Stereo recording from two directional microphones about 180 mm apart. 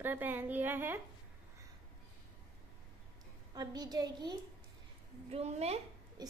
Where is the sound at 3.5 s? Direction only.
20° right (ahead or behind).